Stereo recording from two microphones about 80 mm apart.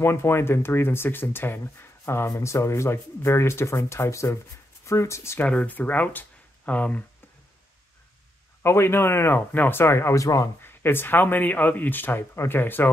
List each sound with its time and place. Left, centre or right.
0.0 s speech: left
5.4 s speech: centre
8.6 s speech: left
10.6 s speech: left